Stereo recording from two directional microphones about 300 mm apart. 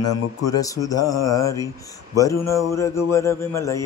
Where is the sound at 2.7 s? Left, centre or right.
Centre.